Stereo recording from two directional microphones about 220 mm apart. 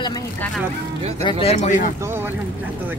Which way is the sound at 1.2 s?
25° left (ahead or behind).